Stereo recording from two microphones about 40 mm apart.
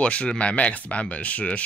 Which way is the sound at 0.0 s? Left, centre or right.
Left.